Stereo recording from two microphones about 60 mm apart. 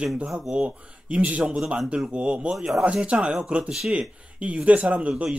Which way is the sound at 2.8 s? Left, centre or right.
Centre.